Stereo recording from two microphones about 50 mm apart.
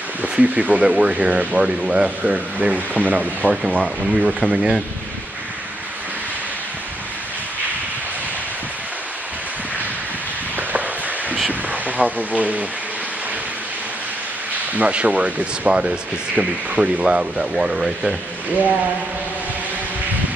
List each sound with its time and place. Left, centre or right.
0.2 s speech: right
0.8 s speech: centre
3.8 s speech: centre
11.7 s speech: right
14.7 s speech: right